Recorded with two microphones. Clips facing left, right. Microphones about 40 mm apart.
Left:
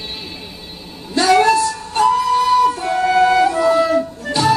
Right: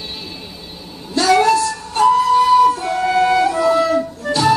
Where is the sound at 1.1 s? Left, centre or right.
Centre.